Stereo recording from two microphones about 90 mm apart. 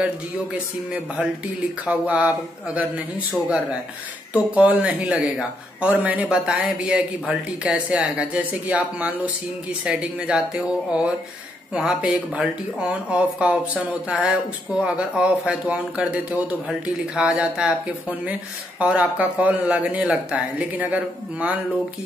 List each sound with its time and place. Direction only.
0.0 s speech: 15° right (ahead or behind)